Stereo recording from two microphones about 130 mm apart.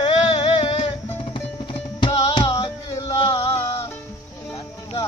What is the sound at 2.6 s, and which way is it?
Music, 30° left (ahead or behind).